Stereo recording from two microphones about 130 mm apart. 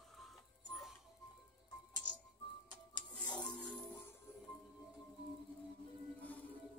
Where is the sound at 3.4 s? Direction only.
10° left (ahead or behind).